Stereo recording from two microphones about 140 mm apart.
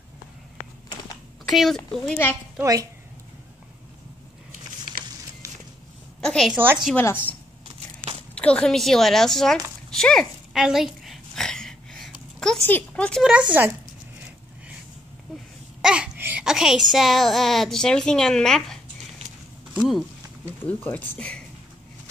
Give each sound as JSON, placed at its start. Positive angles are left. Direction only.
{"t": 1.4, "sound": "speech", "side_deg": 0}
{"t": 2.6, "sound": "speech", "side_deg": -25}
{"t": 6.2, "sound": "a sound", "side_deg": 5}
{"t": 6.5, "sound": "speech", "side_deg": -15}
{"t": 7.0, "sound": "speech", "side_deg": 15}
{"t": 8.4, "sound": "a woman's voice", "side_deg": 5}
{"t": 9.8, "sound": "a sound", "side_deg": 5}
{"t": 12.7, "sound": "speech", "side_deg": 10}
{"t": 13.2, "sound": "speech", "side_deg": -10}
{"t": 15.8, "sound": "speech", "side_deg": -5}
{"t": 20.6, "sound": "speech", "side_deg": 10}